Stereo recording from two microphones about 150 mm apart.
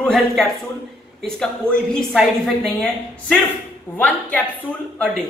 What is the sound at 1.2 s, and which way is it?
A woman's voice, 5° left (ahead or behind).